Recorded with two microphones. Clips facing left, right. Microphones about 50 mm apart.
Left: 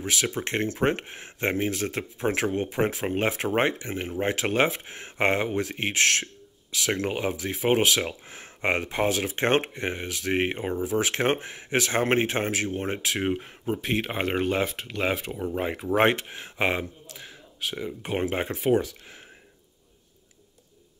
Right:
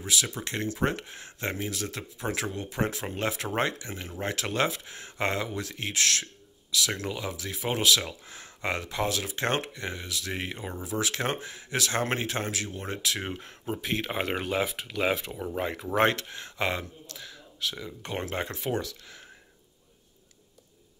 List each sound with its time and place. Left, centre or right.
0.0 s speech: left
13.2 s speech: centre; by 16.8 s left
17.2 s a sound: left
18.0 s speech: centre